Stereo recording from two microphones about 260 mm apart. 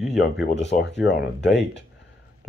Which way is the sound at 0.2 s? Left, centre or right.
Left.